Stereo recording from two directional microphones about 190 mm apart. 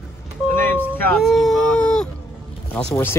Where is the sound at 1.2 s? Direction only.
Centre (ahead or behind).